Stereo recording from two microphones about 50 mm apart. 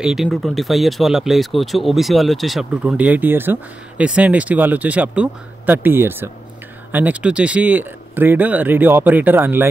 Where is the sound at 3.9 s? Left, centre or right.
Right.